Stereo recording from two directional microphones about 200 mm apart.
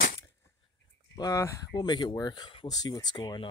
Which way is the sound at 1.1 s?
15° left (ahead or behind).